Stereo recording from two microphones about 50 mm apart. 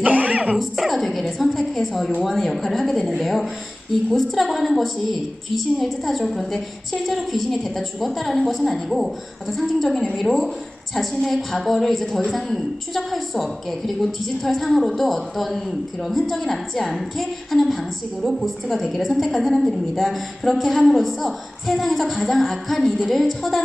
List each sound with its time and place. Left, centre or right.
0.0 s music: right
0.6 s a woman's voice: centre